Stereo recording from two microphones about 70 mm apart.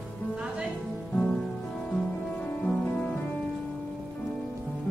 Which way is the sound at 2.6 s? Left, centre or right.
Centre.